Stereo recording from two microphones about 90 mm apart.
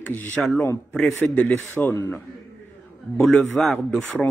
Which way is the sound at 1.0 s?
10° left (ahead or behind).